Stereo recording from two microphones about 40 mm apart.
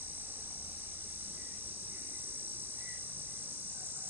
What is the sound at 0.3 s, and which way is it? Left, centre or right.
Vehicle, right.